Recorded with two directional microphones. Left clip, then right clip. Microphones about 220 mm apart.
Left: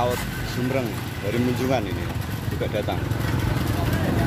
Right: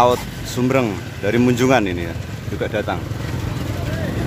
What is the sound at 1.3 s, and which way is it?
Speech, 35° right (ahead or behind).